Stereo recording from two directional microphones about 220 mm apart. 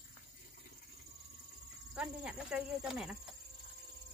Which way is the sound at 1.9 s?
5° right (ahead or behind).